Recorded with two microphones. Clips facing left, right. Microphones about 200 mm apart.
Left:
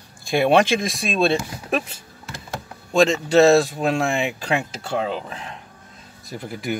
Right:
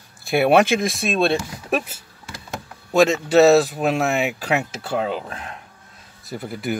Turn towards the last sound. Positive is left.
turn(degrees=0)  # may be behind; listen again after turning